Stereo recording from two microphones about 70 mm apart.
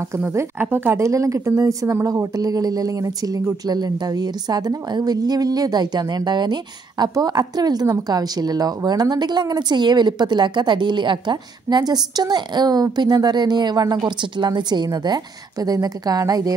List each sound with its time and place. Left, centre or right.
0.6 s a woman's voice: right
0.9 s a woman's voice: right
3.6 s a woman's voice: right